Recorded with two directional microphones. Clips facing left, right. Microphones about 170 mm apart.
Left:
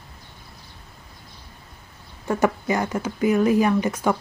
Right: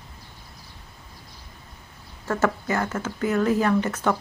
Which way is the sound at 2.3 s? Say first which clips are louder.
Left 2 dB; 15° left (ahead or behind).